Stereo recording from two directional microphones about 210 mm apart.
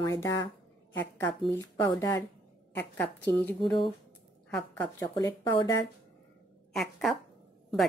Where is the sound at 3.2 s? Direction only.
10° left (ahead or behind).